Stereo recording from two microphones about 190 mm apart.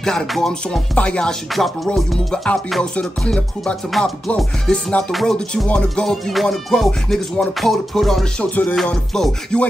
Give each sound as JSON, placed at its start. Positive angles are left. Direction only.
{"t": 0.0, "sound": "music", "side_deg": 5}